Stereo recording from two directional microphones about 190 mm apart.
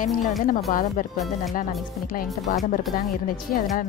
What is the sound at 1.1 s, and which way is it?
Speech, centre (ahead or behind).